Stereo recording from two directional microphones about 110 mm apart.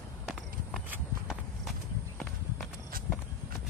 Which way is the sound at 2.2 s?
5° left (ahead or behind).